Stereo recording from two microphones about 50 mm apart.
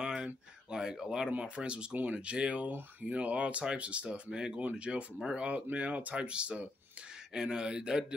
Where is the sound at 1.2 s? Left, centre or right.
Right.